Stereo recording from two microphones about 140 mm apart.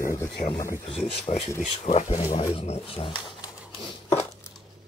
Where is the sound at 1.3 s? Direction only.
45° left (ahead or behind).